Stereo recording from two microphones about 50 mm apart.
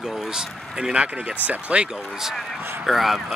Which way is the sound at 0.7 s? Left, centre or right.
Centre.